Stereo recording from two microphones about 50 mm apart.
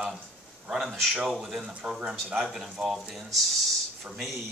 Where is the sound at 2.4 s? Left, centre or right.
Centre.